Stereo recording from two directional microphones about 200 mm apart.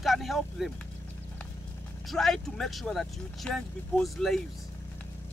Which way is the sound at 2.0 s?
Centre (ahead or behind).